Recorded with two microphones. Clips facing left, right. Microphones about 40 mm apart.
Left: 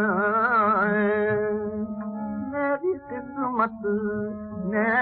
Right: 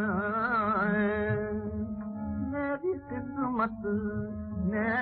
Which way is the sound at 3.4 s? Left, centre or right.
Centre.